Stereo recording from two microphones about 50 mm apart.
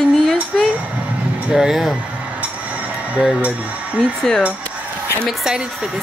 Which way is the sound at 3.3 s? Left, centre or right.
Right.